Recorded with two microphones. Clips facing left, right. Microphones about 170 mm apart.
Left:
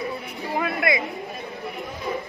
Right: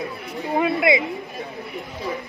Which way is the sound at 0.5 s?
20° right (ahead or behind).